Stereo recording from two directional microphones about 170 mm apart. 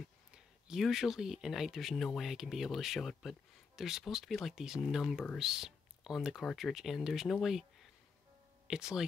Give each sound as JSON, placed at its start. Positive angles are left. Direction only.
{"t": 0.3, "sound": "speech", "side_deg": -5}